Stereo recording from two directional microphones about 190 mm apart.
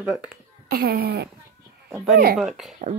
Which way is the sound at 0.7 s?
55° right (ahead or behind).